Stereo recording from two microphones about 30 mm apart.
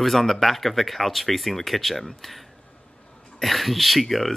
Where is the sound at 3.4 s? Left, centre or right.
Centre.